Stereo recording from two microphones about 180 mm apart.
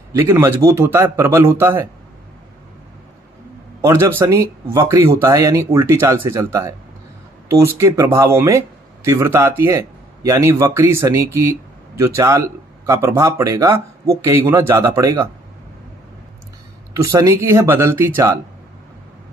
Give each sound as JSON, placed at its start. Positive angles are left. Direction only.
{"t": 0.1, "sound": "speech", "side_deg": -15}
{"t": 3.8, "sound": "speech", "side_deg": -15}
{"t": 16.9, "sound": "speech", "side_deg": -15}